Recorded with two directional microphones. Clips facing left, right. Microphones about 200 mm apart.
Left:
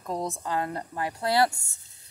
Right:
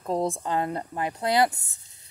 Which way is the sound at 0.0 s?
30° right (ahead or behind).